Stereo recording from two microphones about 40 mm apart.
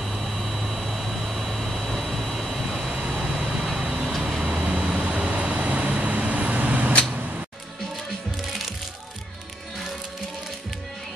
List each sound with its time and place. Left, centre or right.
0.0 s vehicle: centre
4.9 s vehicle: right